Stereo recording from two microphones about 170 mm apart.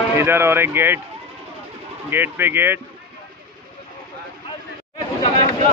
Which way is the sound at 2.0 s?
10° right (ahead or behind).